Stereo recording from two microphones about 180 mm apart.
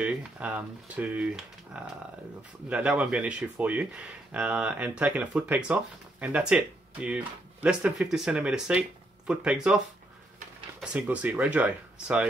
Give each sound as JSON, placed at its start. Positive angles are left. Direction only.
{"t": 0.0, "sound": "speech", "side_deg": -10}
{"t": 10.8, "sound": "speech", "side_deg": -5}